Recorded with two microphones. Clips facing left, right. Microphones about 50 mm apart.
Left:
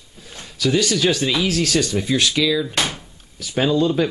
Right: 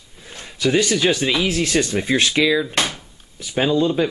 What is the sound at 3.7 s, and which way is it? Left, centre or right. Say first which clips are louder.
Speech: even; centre.